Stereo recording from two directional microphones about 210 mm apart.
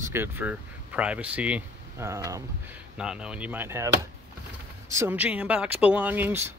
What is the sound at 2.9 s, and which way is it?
Speech, 5° right (ahead or behind).